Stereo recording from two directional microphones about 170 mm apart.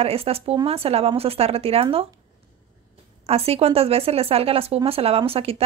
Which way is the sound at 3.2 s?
35° right (ahead or behind).